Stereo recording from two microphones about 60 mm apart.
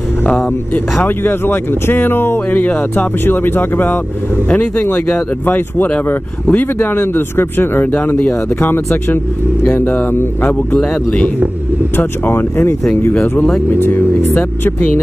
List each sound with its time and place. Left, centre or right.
1.0 s speech: left
5.4 s speech: left
10.7 s speech: centre
12.0 s speech: left
13.1 s speech: left